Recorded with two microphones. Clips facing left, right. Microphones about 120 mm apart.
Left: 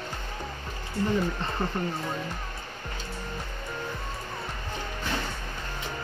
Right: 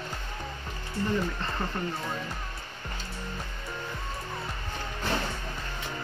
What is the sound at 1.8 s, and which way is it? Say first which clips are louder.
Speech: left 2 dB; 15° left (ahead or behind).